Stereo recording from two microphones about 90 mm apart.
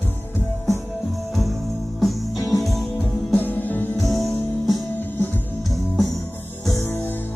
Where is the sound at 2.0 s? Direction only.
Centre (ahead or behind).